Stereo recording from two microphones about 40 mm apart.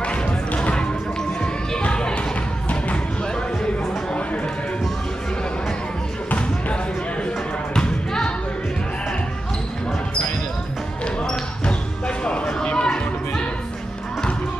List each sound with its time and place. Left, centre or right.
0.0 s music: left
1.4 s a sound: left
7.7 s basketball bounce: centre
12.6 s chatter: left